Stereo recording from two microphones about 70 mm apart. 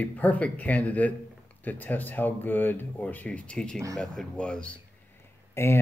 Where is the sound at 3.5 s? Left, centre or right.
Centre.